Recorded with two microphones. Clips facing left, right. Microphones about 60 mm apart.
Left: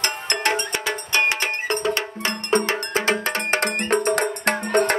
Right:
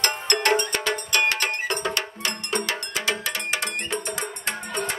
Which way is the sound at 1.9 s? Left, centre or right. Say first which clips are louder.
Left 3 dB; left.